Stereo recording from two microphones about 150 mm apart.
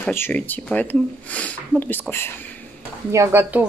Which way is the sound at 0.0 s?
15° left (ahead or behind).